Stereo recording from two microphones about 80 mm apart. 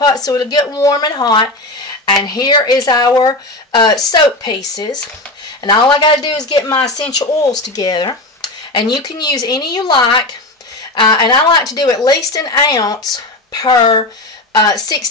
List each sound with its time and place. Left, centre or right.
0.0 s speech: left
0.7 s speech: left
5.6 s speech: left
11.7 s speech: left